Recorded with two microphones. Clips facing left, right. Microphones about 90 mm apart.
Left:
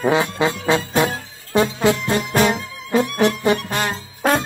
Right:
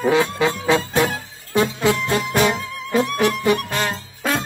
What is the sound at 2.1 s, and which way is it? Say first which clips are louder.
Music: left 1 dB; 30° left (ahead or behind).